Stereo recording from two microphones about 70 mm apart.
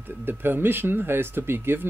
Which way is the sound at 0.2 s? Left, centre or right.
Right.